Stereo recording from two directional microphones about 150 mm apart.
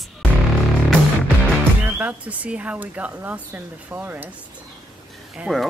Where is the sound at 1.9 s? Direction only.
10° right (ahead or behind).